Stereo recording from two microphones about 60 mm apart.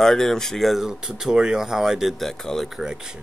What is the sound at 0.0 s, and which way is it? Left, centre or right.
Speech, centre.